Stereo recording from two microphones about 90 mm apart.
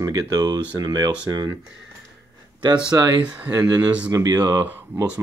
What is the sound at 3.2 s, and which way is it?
Speech, 15° right (ahead or behind).